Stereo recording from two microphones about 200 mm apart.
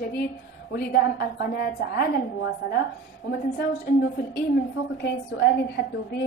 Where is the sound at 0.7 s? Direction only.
50° left (ahead or behind).